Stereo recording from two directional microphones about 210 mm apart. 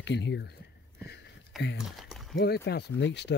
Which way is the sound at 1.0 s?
55° left (ahead or behind).